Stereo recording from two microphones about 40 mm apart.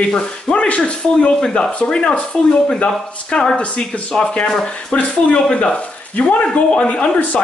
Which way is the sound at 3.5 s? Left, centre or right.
Left.